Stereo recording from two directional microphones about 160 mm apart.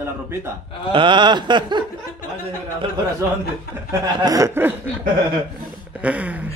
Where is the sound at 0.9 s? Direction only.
30° right (ahead or behind).